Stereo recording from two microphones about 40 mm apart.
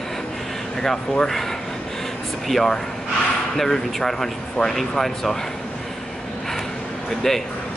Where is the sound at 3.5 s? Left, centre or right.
Centre.